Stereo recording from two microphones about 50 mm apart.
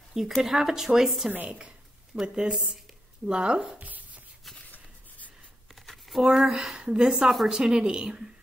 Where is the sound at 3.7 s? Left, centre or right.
Right.